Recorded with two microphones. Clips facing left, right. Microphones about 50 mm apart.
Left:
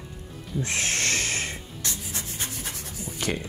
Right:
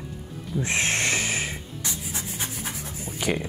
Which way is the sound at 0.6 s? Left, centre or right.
Right.